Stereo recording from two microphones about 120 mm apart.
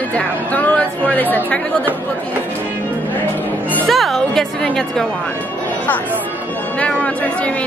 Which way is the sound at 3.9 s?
Centre (ahead or behind).